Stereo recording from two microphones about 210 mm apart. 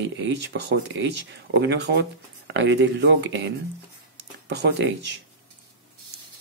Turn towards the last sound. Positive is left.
turn(degrees=-55)  # may be behind; listen again after turning